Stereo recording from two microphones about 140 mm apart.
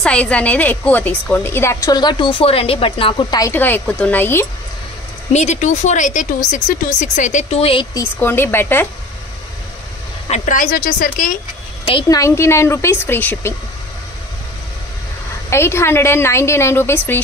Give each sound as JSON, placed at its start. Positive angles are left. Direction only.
{"t": 0.0, "sound": "a woman's voice", "side_deg": 10}
{"t": 3.5, "sound": "speech", "side_deg": 15}
{"t": 5.3, "sound": "speech", "side_deg": 55}
{"t": 7.9, "sound": "speech", "side_deg": 15}
{"t": 10.3, "sound": "speech", "side_deg": 65}
{"t": 12.1, "sound": "a woman's voice", "side_deg": 20}
{"t": 15.5, "sound": "speech", "side_deg": 20}